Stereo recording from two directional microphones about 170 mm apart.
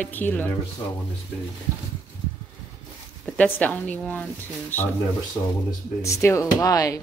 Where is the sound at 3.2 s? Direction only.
10° left (ahead or behind).